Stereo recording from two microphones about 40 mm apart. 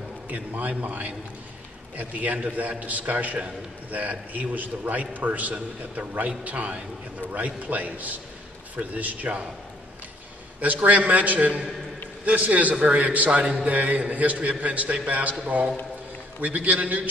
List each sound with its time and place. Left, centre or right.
0.3 s a man's voice: right
10.6 s a man's voice: right
16.4 s a man's voice: right